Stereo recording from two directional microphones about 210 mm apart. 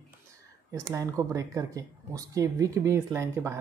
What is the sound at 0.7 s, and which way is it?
Speech, 15° right (ahead or behind).